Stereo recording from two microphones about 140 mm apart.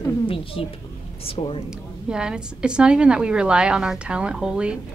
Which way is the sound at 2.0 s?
5° right (ahead or behind).